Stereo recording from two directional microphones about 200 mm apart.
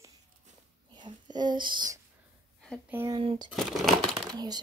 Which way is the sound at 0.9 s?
20° right (ahead or behind).